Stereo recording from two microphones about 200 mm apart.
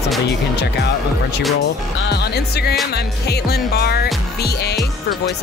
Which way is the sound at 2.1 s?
55° left (ahead or behind).